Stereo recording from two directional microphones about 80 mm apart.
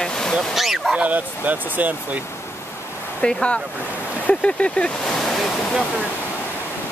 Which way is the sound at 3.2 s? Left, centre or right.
Centre.